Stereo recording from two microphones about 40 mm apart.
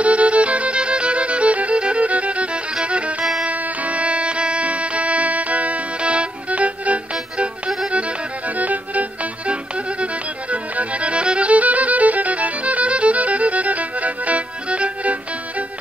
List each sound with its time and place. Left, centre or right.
0.0 s violin: right
2.8 s music: right
10.5 s violin: right